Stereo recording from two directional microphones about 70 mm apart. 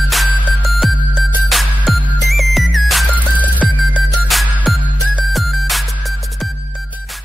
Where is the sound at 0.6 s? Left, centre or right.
Centre.